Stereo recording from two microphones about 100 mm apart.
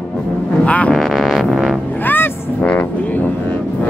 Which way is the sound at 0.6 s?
15° left (ahead or behind).